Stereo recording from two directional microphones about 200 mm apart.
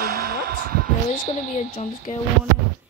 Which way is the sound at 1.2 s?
30° left (ahead or behind).